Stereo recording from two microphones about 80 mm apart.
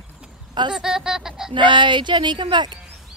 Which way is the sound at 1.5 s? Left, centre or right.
Right.